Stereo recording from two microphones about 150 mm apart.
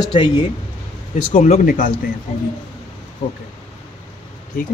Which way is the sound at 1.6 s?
65° left (ahead or behind).